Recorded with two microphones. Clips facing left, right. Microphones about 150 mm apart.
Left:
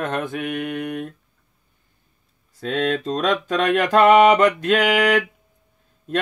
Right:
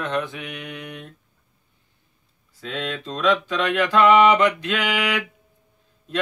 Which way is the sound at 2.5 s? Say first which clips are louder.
Left 8 dB; 45° left (ahead or behind).